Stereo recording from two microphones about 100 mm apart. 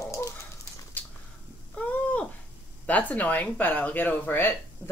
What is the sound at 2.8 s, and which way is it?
Speech, 15° left (ahead or behind).